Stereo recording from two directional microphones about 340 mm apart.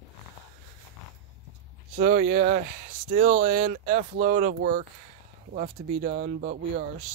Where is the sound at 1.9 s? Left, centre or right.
Right.